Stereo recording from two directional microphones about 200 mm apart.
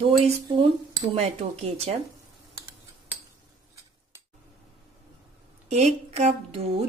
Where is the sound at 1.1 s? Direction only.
30° right (ahead or behind).